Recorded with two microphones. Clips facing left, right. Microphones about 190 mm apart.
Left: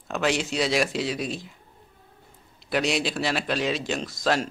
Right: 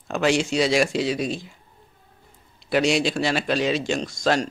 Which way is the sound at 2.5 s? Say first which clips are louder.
Right 5 dB; centre (ahead or behind).